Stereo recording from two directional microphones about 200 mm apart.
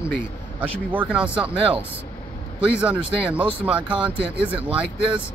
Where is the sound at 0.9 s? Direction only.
5° right (ahead or behind).